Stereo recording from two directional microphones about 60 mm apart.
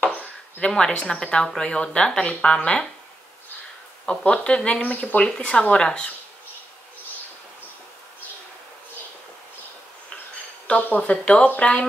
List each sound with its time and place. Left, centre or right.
0.6 s a woman's voice: centre
4.0 s a woman's voice: centre
11.1 s speech: centre